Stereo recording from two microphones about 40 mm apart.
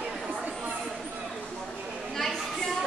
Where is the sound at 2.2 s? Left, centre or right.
Centre.